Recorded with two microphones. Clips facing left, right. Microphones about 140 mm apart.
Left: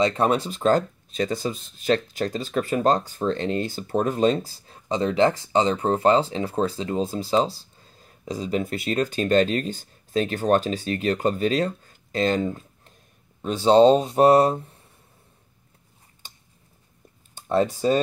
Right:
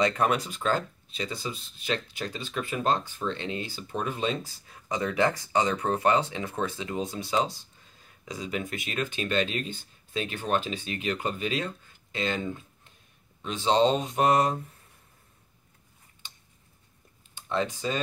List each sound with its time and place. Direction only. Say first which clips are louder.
0.0 s speech: left 4 dB; 25° left (ahead or behind)
17.5 s speech: left 8 dB; 40° left (ahead or behind)